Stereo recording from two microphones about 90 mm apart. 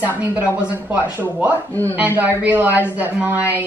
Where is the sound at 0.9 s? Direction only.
25° right (ahead or behind).